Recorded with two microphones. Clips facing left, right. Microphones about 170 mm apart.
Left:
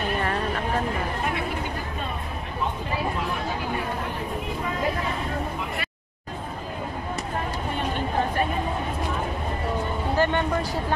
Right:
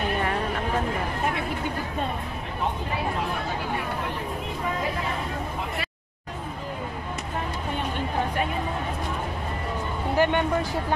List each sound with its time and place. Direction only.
10.1 s speech: 15° right (ahead or behind)